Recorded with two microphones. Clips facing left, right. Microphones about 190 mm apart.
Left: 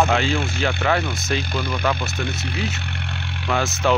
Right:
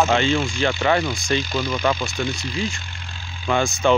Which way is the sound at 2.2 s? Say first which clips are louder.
Right 2 dB; 65° left (ahead or behind).